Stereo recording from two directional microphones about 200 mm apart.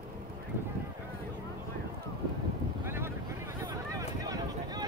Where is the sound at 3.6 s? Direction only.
15° right (ahead or behind).